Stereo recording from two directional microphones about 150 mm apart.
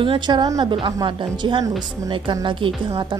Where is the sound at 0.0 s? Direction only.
30° right (ahead or behind).